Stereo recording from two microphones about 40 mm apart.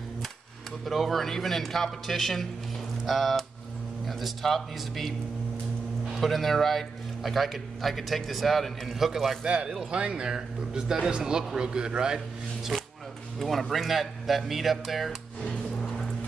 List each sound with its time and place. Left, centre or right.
0.8 s a man's voice: centre
6.1 s a man's voice: centre
9.4 s speech: right
13.4 s a man's voice: centre
15.5 s a sound: centre